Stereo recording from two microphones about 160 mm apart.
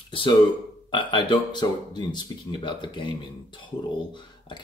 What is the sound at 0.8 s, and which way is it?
Speech, 30° left (ahead or behind).